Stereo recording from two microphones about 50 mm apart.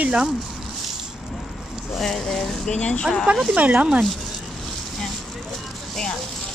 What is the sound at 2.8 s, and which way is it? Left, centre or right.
Speech, centre.